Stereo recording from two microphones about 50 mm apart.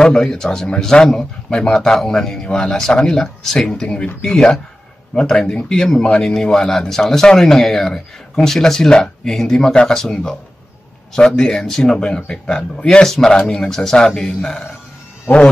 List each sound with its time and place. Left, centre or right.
0.0 s speech: centre
3.9 s speech: centre